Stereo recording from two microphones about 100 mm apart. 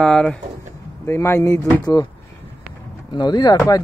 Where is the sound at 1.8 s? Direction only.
45° left (ahead or behind).